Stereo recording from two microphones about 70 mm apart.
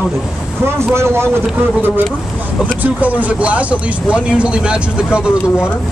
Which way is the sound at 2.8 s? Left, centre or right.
Right.